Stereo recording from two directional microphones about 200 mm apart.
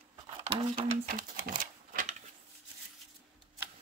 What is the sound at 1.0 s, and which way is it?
Speech, 45° right (ahead or behind).